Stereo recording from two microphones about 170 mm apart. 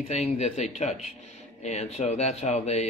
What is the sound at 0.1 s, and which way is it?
Speech, 40° left (ahead or behind).